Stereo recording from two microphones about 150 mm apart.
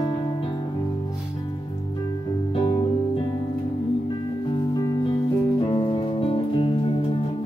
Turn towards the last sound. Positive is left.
turn(degrees=40)  # may be behind; listen again after turning